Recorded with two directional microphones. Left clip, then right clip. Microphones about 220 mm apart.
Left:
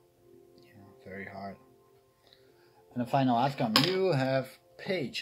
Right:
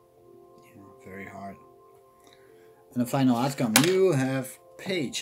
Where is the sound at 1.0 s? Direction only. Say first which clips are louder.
Right 1 dB; 10° left (ahead or behind).